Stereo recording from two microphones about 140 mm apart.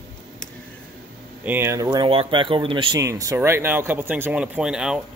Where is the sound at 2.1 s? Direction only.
40° right (ahead or behind).